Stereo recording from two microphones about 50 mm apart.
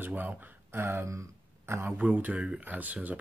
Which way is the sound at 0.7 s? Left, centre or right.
Right.